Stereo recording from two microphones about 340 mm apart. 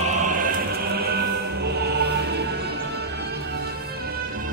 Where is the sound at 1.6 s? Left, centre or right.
Right.